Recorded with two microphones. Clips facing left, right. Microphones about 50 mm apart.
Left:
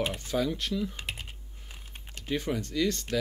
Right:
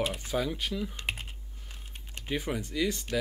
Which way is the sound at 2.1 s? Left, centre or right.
Centre.